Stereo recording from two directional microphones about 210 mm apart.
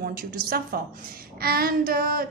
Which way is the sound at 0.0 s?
45° right (ahead or behind).